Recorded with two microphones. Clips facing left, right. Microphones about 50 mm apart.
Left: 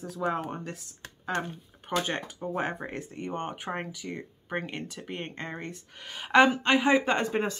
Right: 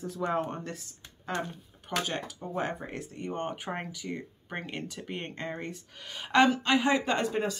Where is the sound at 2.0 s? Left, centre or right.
Left.